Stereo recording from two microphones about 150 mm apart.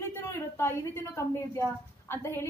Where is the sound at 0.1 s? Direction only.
15° left (ahead or behind).